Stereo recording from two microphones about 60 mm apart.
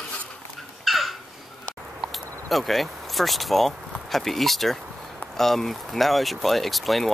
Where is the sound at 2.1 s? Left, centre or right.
Centre.